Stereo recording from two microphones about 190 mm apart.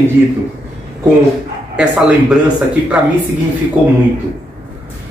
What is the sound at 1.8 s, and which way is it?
Speech, 5° right (ahead or behind).